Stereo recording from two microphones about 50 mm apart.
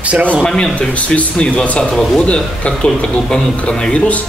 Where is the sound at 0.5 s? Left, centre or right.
Left.